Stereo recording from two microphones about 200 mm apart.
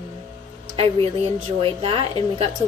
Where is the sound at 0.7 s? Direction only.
30° right (ahead or behind).